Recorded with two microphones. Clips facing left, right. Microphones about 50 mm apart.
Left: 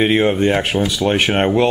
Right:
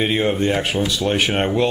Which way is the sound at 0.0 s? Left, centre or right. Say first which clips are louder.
Left 4 dB; centre.